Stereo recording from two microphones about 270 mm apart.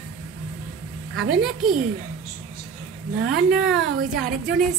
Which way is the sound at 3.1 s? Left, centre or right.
Right.